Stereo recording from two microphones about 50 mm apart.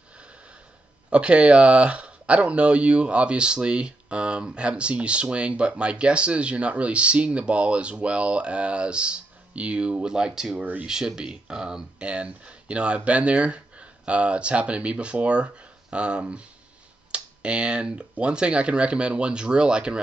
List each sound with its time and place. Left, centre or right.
1.1 s speech: right
10.6 s speech: right
10.9 s speech: centre